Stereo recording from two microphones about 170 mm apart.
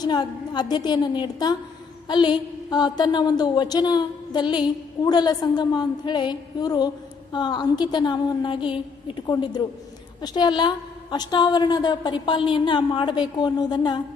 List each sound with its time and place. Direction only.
0.0 s a woman's voice: 25° left (ahead or behind)